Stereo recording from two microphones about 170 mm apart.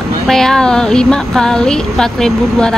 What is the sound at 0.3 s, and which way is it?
Speech, 5° left (ahead or behind).